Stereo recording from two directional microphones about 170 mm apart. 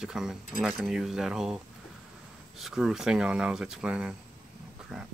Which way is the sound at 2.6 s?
5° right (ahead or behind).